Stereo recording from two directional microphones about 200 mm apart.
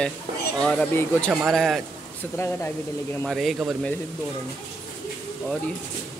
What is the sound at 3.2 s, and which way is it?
Speech, centre (ahead or behind).